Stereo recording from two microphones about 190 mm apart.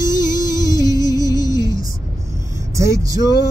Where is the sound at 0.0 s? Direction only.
20° left (ahead or behind).